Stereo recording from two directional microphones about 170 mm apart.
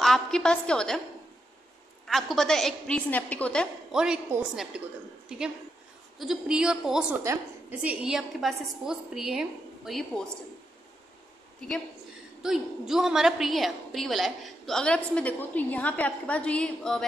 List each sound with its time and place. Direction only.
0.0 s a woman's voice: 5° left (ahead or behind)
2.0 s a woman's voice: centre (ahead or behind)
3.9 s a woman's voice: 5° right (ahead or behind)
12.4 s a woman's voice: 5° right (ahead or behind)